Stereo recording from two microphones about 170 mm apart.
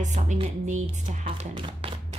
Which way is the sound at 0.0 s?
45° right (ahead or behind).